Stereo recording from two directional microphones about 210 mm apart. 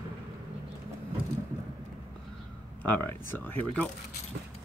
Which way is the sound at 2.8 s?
10° left (ahead or behind).